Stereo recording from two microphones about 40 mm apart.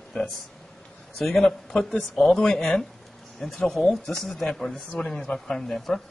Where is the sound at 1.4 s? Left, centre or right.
Left.